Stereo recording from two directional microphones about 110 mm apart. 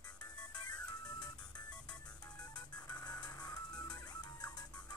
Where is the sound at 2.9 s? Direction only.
35° left (ahead or behind).